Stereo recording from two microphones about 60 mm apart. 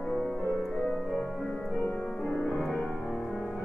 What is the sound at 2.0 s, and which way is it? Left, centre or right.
Music, centre.